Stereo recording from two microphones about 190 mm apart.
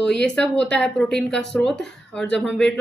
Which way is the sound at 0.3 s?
5° left (ahead or behind).